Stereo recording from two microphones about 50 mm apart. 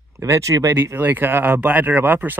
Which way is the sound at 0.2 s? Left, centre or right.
Right.